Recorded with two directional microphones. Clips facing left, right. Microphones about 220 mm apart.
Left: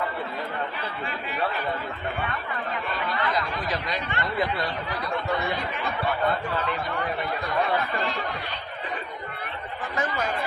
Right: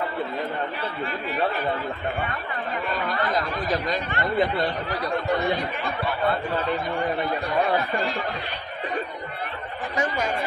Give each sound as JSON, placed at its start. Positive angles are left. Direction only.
{"t": 3.1, "sound": "speech", "side_deg": -45}
{"t": 9.9, "sound": "speech", "side_deg": -15}